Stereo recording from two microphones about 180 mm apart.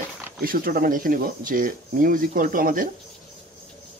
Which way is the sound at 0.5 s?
50° right (ahead or behind).